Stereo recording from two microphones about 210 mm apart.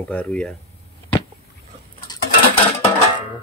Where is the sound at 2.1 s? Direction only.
20° left (ahead or behind).